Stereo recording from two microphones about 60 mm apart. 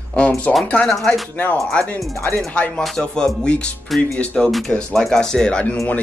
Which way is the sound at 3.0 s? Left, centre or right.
Centre.